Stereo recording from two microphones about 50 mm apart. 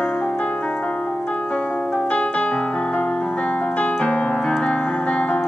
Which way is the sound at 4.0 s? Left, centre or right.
Centre.